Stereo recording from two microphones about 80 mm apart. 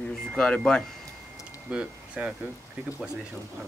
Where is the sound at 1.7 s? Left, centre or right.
Centre.